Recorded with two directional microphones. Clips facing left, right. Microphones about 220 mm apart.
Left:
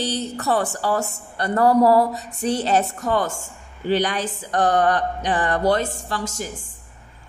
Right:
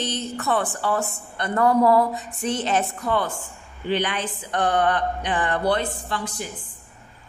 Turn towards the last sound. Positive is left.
turn(degrees=45)  # may be behind; listen again after turning